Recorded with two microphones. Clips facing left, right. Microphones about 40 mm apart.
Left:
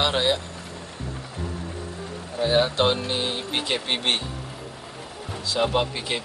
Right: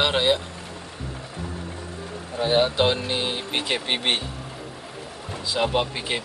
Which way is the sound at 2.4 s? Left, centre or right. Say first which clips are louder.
Even; centre.